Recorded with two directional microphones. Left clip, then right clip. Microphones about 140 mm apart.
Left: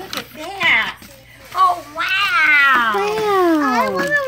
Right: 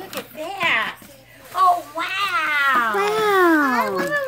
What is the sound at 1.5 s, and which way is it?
Cat, 15° right (ahead or behind).